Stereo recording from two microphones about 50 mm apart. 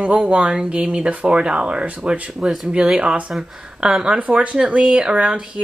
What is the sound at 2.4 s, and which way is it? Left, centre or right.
Speech, centre.